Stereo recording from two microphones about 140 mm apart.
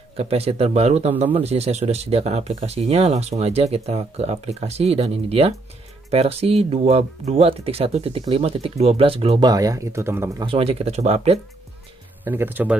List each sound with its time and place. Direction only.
0.2 s speech: 45° right (ahead or behind)
9.5 s speech: 25° right (ahead or behind)
10.4 s speech: 40° right (ahead or behind)
12.3 s speech: 15° right (ahead or behind)